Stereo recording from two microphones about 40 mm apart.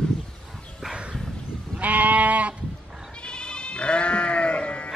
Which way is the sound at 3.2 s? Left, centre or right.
Left.